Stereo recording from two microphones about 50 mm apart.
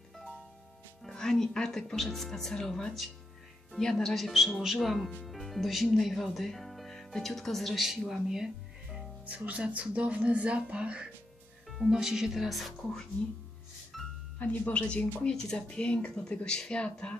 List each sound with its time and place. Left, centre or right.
1.0 s speech: centre
9.2 s speech: right
11.9 s speech: centre
13.9 s music: centre
14.4 s speech: left